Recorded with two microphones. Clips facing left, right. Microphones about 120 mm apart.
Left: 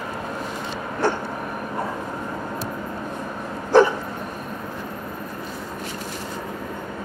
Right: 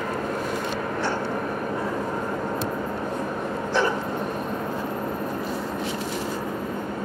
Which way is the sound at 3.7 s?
45° left (ahead or behind).